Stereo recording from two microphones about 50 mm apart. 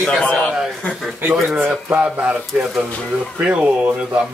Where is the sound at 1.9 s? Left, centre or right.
Right.